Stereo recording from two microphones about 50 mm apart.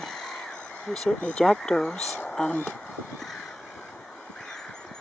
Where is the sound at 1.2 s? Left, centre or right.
Left.